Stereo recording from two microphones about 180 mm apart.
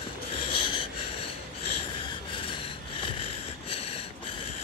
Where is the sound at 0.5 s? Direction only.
30° left (ahead or behind).